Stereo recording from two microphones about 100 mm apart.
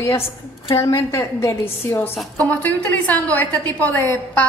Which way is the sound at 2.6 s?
15° left (ahead or behind).